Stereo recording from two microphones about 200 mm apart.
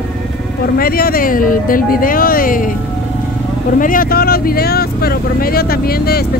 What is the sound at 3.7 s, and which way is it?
Speech, 45° left (ahead or behind).